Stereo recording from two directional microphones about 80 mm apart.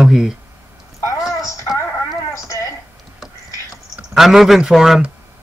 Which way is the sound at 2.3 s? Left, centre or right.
Left.